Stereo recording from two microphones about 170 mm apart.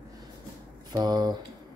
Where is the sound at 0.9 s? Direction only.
25° right (ahead or behind).